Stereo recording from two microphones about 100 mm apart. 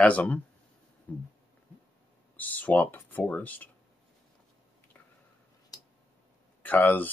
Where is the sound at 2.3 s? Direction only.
15° left (ahead or behind).